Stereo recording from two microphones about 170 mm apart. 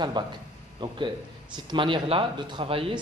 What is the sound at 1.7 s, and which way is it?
A man's voice, 30° right (ahead or behind).